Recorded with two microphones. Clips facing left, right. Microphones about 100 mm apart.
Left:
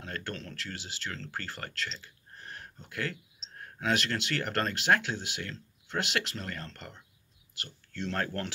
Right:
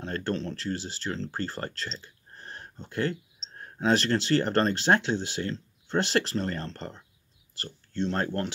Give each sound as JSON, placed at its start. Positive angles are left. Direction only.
{"t": 0.0, "sound": "speech", "side_deg": -35}